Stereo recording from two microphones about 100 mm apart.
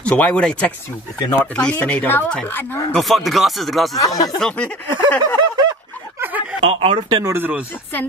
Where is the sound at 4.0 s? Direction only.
35° left (ahead or behind).